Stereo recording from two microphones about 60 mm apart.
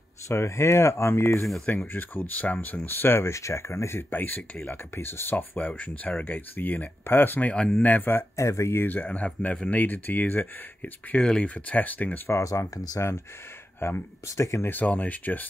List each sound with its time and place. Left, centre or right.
0.3 s speech: left
1.7 s speech: left
4.1 s speech: left
5.7 s speech: left
8.4 s speech: left
8.8 s speech: left
11.1 s speech: centre
12.3 s speech: left
13.7 s speech: left
14.2 s speech: left
14.6 s speech: left